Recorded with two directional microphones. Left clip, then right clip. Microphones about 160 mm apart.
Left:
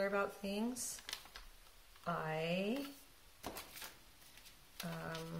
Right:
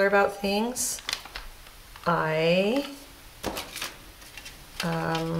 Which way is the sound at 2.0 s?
30° right (ahead or behind).